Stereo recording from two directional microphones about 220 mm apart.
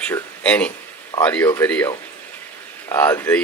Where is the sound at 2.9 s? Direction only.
10° left (ahead or behind).